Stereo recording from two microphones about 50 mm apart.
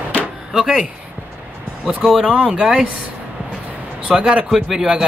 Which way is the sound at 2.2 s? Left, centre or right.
Centre.